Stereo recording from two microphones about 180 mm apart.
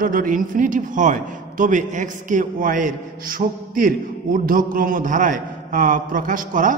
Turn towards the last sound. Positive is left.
turn(degrees=-45)  # may be behind; listen again after turning